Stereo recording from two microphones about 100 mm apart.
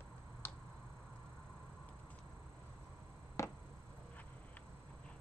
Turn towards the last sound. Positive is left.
turn(degrees=30)  # may be behind; listen again after turning